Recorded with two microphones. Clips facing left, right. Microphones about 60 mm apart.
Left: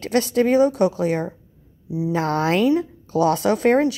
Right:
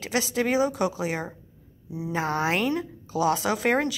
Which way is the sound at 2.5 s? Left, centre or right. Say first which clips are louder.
Left 8 dB; right.